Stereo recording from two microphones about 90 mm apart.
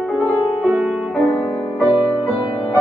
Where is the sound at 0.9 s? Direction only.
5° left (ahead or behind).